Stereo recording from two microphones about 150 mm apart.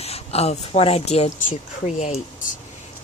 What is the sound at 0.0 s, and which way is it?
Speech, 45° left (ahead or behind).